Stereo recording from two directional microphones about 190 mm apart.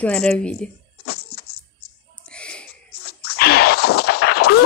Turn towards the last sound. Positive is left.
turn(degrees=55)  # may be behind; listen again after turning